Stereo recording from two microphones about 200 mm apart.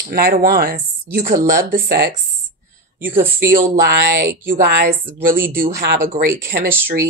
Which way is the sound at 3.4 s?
45° right (ahead or behind).